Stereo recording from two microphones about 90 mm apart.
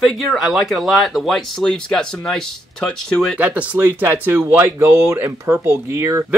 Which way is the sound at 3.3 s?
15° right (ahead or behind).